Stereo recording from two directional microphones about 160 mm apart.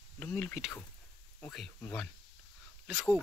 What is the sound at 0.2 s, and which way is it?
Speech, 10° left (ahead or behind).